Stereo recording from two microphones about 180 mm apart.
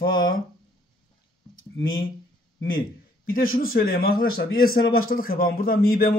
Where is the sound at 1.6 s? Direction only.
90° left.